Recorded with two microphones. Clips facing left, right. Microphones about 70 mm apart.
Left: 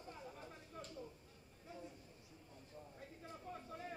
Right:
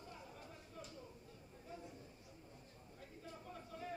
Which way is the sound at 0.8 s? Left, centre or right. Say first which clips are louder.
Left 2 dB; left.